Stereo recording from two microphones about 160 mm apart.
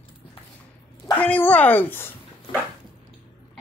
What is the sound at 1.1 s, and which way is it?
A woman's voice, 10° left (ahead or behind).